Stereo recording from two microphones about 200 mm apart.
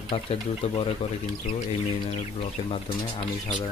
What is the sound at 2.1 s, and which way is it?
Speech, 30° left (ahead or behind).